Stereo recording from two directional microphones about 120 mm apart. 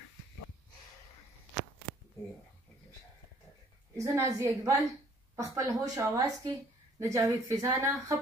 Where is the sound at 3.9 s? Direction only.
25° right (ahead or behind).